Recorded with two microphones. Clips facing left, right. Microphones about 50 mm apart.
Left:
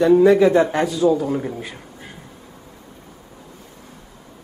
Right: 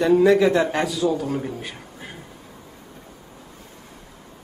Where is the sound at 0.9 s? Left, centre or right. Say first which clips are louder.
Left 5 dB; left.